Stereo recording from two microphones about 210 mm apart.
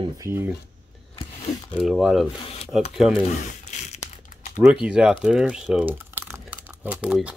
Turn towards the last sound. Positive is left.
turn(degrees=-5)  # may be behind; listen again after turning